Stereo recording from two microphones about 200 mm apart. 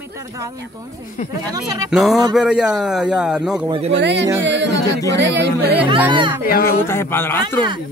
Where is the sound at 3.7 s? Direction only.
30° right (ahead or behind).